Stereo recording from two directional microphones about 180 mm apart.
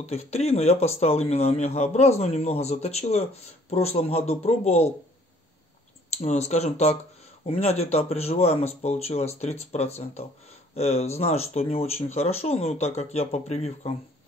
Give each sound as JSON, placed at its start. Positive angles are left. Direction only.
{"t": 0.0, "sound": "speech", "side_deg": 35}
{"t": 6.0, "sound": "speech", "side_deg": 35}